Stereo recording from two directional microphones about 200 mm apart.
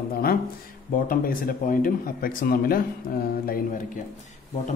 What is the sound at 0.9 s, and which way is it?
Speech, 45° left (ahead or behind).